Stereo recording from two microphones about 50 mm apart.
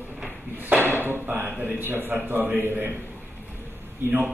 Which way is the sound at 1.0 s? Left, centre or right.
Right.